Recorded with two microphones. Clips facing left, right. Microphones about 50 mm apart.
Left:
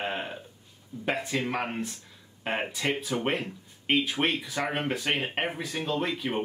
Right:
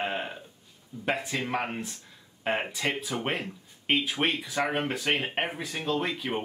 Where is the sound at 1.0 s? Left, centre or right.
Centre.